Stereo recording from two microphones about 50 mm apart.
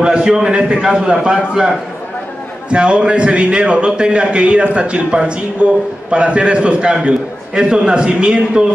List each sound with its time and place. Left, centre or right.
0.0 s a man's voice: centre